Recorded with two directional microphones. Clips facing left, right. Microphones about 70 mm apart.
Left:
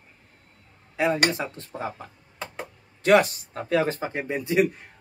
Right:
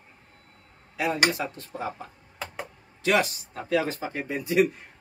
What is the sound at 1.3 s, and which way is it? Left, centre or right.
Speech, left.